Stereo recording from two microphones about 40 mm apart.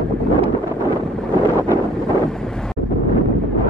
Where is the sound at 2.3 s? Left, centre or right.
Centre.